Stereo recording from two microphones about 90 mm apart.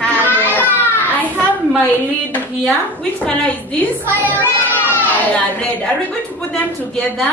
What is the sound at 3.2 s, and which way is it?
Speech, 15° left (ahead or behind).